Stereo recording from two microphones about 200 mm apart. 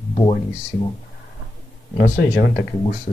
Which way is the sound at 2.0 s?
55° left (ahead or behind).